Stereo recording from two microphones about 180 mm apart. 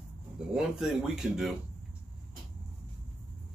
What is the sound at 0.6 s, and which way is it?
Speech, centre (ahead or behind).